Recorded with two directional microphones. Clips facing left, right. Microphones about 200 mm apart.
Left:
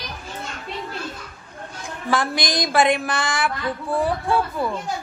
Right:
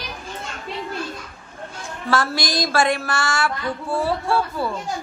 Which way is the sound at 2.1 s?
20° left (ahead or behind).